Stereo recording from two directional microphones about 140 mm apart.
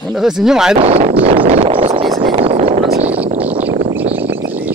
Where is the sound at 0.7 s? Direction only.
45° right (ahead or behind).